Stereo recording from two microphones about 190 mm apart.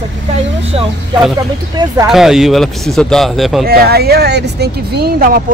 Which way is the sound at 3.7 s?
55° right (ahead or behind).